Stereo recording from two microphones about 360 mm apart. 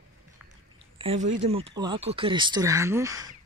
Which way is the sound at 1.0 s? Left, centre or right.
Centre.